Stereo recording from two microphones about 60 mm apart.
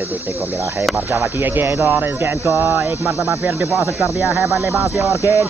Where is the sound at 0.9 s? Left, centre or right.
Right.